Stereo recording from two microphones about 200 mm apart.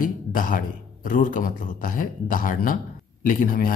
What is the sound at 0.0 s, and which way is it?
Speech, 45° left (ahead or behind).